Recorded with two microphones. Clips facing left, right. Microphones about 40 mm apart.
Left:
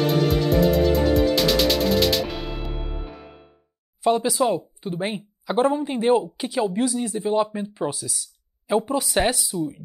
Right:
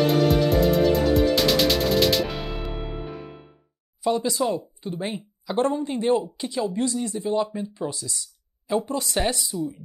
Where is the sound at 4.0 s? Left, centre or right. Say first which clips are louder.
Left 3 dB; left.